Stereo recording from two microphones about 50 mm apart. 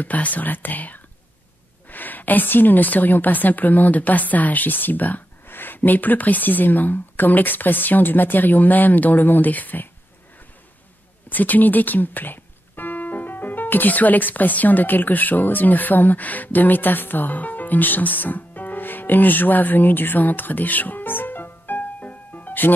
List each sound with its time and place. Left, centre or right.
0.0 s a woman's voice: left
11.2 s speech: left